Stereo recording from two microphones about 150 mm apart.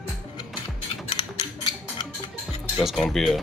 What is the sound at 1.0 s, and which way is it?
Mechanisms, 30° left (ahead or behind).